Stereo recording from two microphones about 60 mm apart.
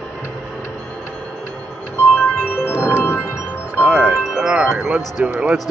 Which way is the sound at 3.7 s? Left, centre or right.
Right.